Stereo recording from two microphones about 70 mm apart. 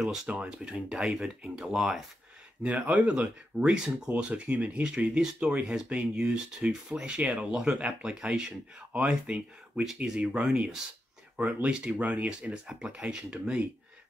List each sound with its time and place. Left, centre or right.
0.0 s speech: centre
2.6 s speech: centre